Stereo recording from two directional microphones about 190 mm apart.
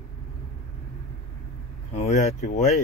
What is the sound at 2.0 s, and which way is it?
Speech, 35° left (ahead or behind).